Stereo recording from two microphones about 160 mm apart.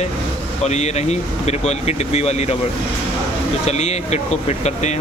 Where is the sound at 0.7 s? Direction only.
45° left (ahead or behind).